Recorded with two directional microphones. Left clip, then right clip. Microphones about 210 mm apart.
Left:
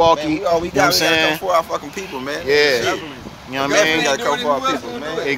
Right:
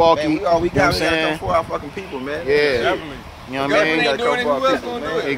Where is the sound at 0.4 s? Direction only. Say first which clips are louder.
Even; 30° left (ahead or behind).